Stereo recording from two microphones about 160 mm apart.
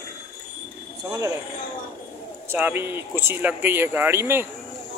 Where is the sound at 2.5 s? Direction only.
10° right (ahead or behind).